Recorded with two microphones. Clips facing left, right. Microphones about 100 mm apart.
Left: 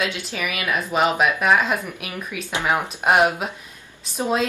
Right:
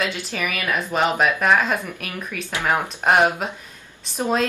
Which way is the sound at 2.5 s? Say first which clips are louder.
Even; 15° left (ahead or behind).